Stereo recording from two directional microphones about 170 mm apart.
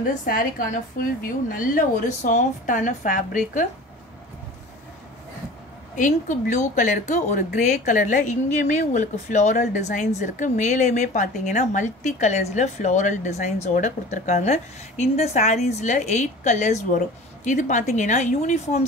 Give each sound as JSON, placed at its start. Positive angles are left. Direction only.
{"t": 0.0, "sound": "a woman's voice", "side_deg": 50}
{"t": 5.9, "sound": "speech", "side_deg": 50}